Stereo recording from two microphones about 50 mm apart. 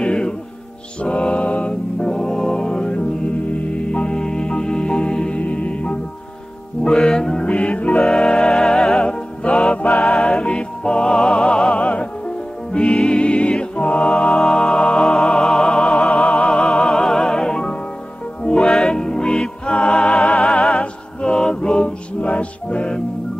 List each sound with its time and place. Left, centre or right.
0.0 s music: centre
5.4 s music: left
7.0 s music: centre
7.4 s music: left
8.0 s music: centre
9.0 s music: centre
12.7 s music: centre
18.7 s music: centre